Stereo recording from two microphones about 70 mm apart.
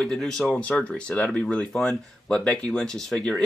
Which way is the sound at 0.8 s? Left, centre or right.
Centre.